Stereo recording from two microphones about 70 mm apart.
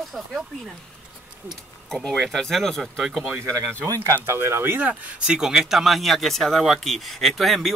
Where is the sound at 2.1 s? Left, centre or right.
Centre.